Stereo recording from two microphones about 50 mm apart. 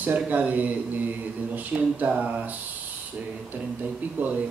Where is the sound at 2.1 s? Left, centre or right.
Right.